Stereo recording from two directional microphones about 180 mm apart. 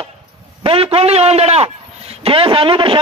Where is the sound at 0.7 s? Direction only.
35° right (ahead or behind).